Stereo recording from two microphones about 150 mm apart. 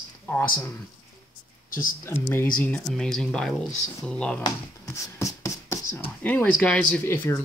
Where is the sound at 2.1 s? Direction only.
20° left (ahead or behind).